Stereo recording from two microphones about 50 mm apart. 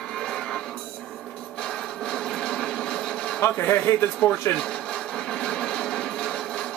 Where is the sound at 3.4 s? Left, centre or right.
Left.